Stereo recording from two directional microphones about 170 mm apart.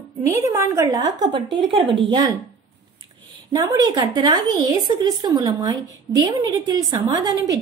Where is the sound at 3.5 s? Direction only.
20° right (ahead or behind).